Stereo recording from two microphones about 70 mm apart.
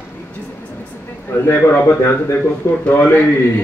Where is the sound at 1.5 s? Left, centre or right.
Left.